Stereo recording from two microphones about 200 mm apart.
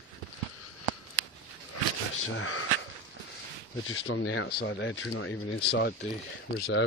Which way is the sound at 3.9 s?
75° left (ahead or behind).